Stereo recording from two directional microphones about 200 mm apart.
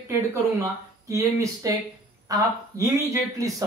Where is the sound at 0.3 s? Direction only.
15° right (ahead or behind).